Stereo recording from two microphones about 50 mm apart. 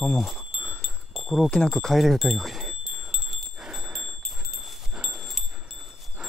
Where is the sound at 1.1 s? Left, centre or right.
Centre.